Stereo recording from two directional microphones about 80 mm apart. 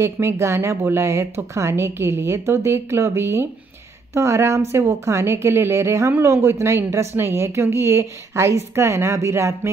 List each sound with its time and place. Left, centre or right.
0.0 s speech: right